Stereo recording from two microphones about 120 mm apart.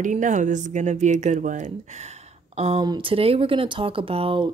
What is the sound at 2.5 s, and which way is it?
Speech, 55° right (ahead or behind).